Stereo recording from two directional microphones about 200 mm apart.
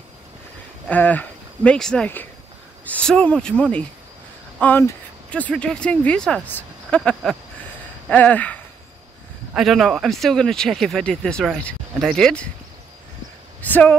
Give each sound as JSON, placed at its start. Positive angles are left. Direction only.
{"t": 0.8, "sound": "speech", "side_deg": 10}
{"t": 8.1, "sound": "a sound", "side_deg": 10}
{"t": 9.5, "sound": "speech", "side_deg": 0}
{"t": 13.6, "sound": "speech", "side_deg": 10}